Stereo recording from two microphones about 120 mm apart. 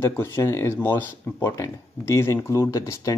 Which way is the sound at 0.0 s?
20° left (ahead or behind).